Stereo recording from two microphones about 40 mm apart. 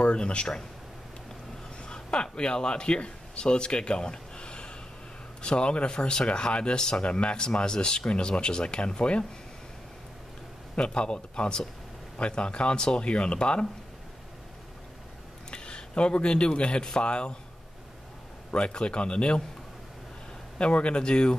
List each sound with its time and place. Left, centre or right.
0.0 s speech: left
1.8 s speech: left
10.8 s speech: left
15.5 s speech: left
18.5 s speech: left
20.5 s speech: left